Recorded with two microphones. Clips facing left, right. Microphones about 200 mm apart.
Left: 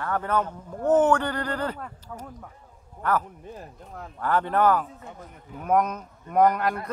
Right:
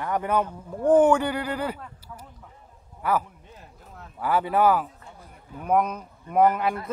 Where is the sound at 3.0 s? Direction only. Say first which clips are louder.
Even; 5° right (ahead or behind).